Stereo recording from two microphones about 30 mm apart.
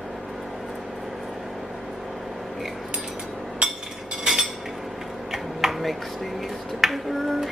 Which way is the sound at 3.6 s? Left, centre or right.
Right.